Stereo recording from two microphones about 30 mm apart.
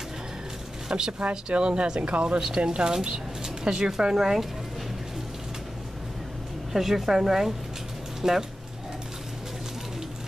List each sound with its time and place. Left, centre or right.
0.8 s speech: right
1.5 s speech: right
2.0 s speech: right
2.5 s speech: right
4.0 s speech: centre
6.7 s speech: centre